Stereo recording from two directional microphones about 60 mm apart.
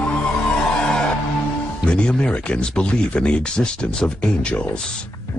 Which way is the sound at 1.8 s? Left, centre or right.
Centre.